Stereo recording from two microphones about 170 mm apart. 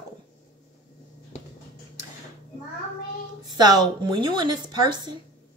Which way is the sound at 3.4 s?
25° right (ahead or behind).